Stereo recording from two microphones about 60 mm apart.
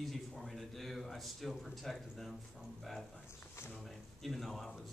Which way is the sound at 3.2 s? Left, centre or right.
Left.